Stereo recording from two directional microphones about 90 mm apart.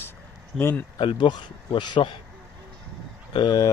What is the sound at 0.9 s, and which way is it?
Speech, 60° left (ahead or behind).